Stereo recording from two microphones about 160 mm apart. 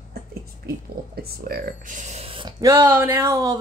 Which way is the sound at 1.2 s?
75° right (ahead or behind).